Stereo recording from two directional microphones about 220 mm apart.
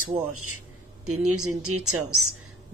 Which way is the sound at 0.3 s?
75° right (ahead or behind).